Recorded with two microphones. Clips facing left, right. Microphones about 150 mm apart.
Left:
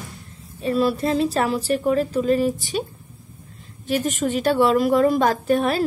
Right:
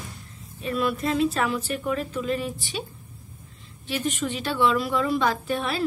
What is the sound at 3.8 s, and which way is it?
A woman's voice, 45° left (ahead or behind).